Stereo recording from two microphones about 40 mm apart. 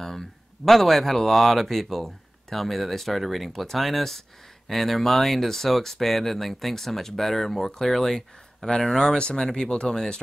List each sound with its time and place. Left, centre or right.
0.0 s speech: centre